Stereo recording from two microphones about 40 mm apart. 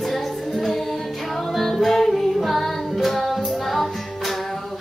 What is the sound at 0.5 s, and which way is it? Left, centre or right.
Music, centre.